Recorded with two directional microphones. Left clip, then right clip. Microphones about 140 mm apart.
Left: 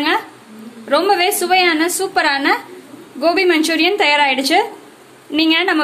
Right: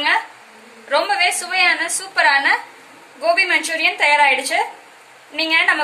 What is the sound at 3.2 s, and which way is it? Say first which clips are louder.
A woman's voice: left 2 dB; 90° left.